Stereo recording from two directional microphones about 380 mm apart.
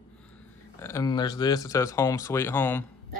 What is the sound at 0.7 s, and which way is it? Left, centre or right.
Speech, centre.